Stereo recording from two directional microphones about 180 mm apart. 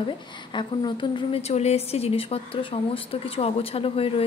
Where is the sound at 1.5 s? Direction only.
35° left (ahead or behind).